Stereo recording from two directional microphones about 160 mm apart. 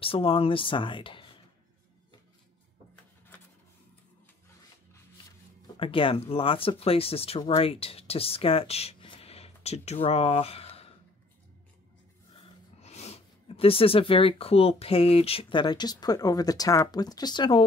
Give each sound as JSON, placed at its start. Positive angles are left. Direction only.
{"t": 0.0, "sound": "speech", "side_deg": 35}
{"t": 5.8, "sound": "speech", "side_deg": 35}
{"t": 12.8, "sound": "speech", "side_deg": 40}